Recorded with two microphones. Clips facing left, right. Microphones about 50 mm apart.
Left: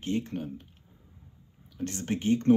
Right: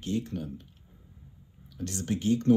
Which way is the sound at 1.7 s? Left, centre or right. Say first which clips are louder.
Even; left.